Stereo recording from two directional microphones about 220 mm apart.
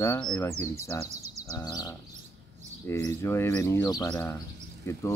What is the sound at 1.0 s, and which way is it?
Speech, 30° right (ahead or behind).